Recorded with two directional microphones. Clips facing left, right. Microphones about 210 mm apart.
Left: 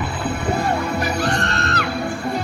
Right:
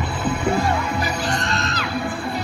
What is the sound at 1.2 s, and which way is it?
Music, 60° left (ahead or behind).